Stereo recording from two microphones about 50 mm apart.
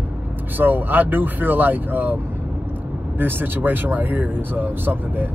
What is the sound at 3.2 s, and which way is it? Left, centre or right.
Speech, right.